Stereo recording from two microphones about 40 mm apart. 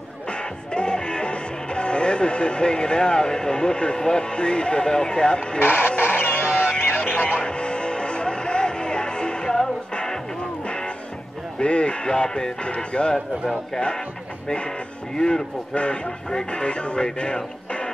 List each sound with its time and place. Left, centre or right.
0.3 s music: left
5.6 s music: left
7.3 s music: left
11.6 s speech: left
15.1 s speech: centre
15.7 s speech: left